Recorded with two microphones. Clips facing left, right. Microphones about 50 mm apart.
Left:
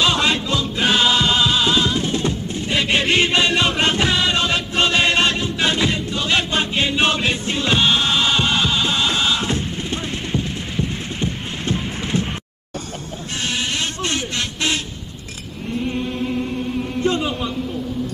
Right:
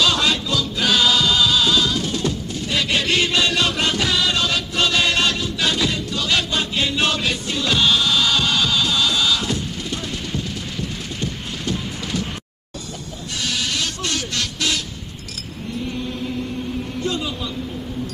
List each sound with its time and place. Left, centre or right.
0.0 s music: left
13.4 s a sound: left
17.0 s chant: left